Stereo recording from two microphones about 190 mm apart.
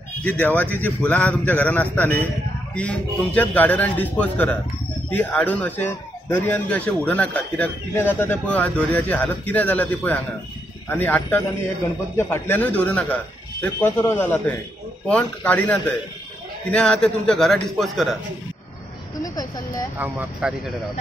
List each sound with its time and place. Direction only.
0.2 s a man's voice: 10° left (ahead or behind)
16.7 s a man's voice: 5° left (ahead or behind)
19.2 s speech: 20° left (ahead or behind)
20.0 s speech: 5° right (ahead or behind)